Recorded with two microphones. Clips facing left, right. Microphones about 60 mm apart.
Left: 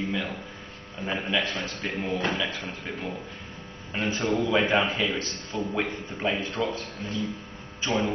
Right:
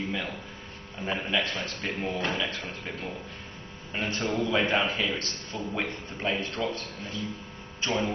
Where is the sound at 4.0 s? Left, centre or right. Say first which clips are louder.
Left 3 dB; centre.